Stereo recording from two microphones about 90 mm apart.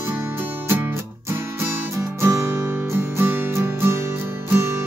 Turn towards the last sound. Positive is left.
turn(degrees=-30)  # may be behind; listen again after turning